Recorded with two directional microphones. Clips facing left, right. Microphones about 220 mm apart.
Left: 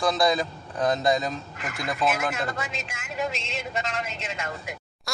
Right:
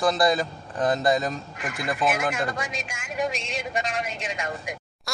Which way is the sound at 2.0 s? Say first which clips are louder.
Right 1 dB; 15° right (ahead or behind).